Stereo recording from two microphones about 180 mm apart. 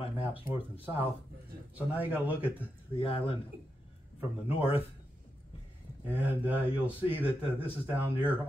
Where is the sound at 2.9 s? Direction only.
30° left (ahead or behind).